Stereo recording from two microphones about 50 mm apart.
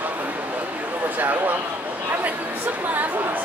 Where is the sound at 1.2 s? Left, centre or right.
Right.